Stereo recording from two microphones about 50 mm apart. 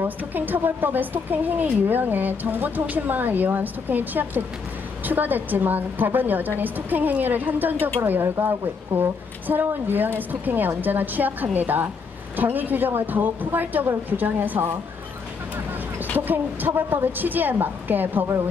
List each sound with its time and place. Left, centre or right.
0.3 s speech: right
8.2 s speech: right
16.3 s speech: right